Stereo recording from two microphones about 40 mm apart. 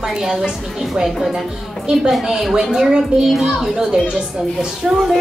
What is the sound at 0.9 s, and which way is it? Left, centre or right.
Speech, centre.